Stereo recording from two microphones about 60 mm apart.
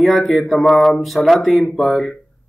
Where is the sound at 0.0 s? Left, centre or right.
Centre.